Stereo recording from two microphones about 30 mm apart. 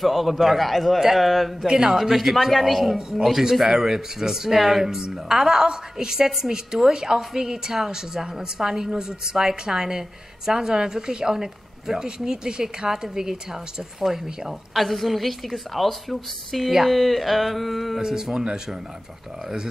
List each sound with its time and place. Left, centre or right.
0.0 s a woman's voice: centre
14.8 s a woman's voice: centre
18.0 s a woman's voice: centre